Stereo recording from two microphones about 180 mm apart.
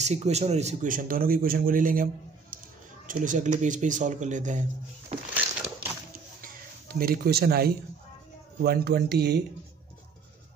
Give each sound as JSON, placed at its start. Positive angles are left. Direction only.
{"t": 0.0, "sound": "speech", "side_deg": -40}
{"t": 2.5, "sound": "a sound", "side_deg": -50}
{"t": 3.1, "sound": "speech", "side_deg": -45}
{"t": 6.9, "sound": "speech", "side_deg": -55}